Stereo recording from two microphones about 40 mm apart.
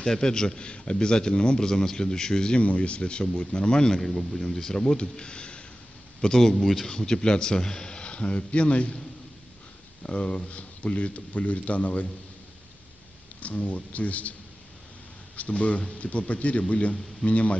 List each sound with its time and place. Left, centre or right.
0.0 s a man's voice: centre
2.6 s a man's voice: left
4.0 s a man's voice: centre; by 5.6 s left
6.2 s a man's voice: centre; by 9.0 s left
10.0 s speech: left
13.4 s speech: left
15.3 s speech: left